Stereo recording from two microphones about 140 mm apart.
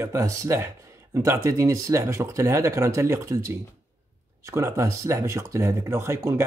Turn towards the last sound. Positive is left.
turn(degrees=-20)  # may be behind; listen again after turning